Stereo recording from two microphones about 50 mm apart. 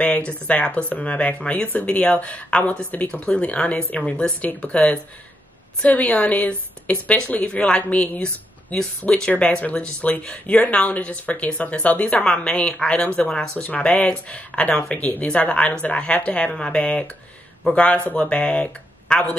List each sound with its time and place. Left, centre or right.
0.0 s speech: left
13.7 s speech: left